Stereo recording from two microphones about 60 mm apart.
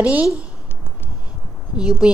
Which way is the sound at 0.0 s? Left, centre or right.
Right.